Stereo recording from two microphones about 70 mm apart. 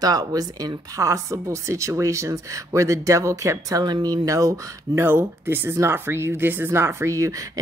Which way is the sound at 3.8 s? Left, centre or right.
Right.